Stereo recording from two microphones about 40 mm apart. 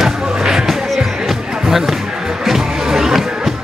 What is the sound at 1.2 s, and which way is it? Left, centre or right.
Music, centre.